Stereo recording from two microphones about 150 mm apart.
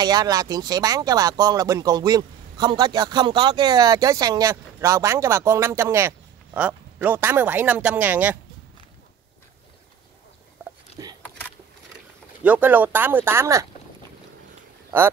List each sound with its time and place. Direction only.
0.0 s speech: 25° right (ahead or behind); by 8.4 s 10° right (ahead or behind)
11.0 s a sound: 25° right (ahead or behind)
12.4 s speech: 10° right (ahead or behind)